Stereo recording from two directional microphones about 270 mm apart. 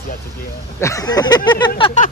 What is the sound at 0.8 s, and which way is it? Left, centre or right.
Speech, centre.